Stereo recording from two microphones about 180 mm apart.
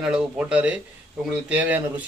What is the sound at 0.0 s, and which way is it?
Speech, 5° right (ahead or behind).